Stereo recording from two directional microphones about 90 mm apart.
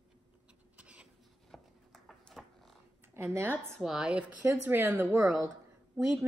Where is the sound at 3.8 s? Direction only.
5° right (ahead or behind).